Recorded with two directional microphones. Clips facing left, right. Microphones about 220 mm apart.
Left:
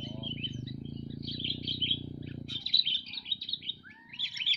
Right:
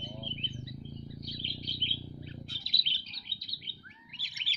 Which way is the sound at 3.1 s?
30° left (ahead or behind).